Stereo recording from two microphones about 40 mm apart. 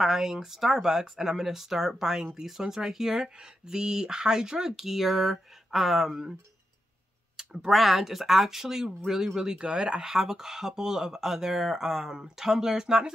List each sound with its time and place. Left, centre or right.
0.0 s speech: centre
7.3 s a sound: centre
7.7 s speech: centre; by 10.1 s right
10.1 s speech: centre